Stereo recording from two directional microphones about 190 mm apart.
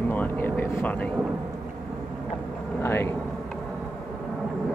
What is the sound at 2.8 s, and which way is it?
Speech, 10° left (ahead or behind).